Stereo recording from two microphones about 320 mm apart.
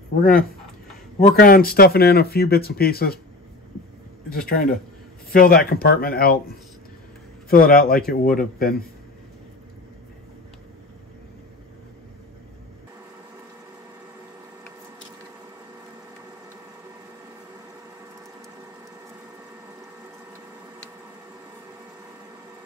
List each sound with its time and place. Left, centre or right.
0.2 s speech: left
4.3 s speech: left
7.4 s speech: left